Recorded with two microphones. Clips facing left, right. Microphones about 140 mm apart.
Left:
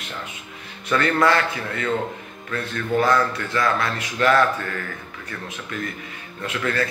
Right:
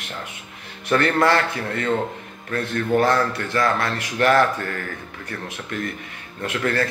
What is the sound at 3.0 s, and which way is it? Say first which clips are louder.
Speech: even; 55° right (ahead or behind).